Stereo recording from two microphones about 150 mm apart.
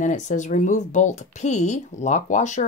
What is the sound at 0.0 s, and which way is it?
Speech, 55° left (ahead or behind).